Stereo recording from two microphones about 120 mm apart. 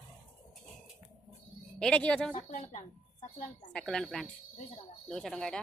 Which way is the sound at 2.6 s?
60° left (ahead or behind).